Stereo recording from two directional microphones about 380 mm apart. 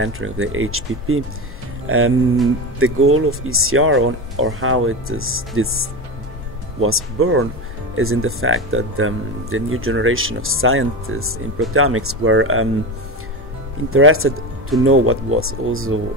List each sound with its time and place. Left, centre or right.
0.0 s speech: right
13.8 s speech: right